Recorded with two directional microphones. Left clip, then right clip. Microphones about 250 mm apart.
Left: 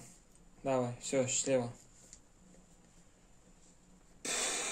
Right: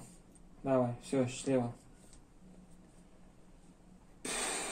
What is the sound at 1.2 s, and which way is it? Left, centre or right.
Speech, centre.